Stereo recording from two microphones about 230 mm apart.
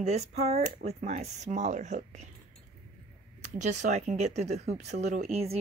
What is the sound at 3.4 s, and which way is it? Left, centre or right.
Speech, right.